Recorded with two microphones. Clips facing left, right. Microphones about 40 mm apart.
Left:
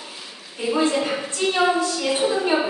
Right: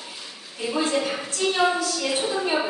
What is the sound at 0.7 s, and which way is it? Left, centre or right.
Speech, centre.